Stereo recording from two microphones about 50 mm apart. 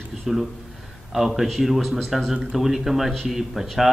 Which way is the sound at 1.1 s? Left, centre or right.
Centre.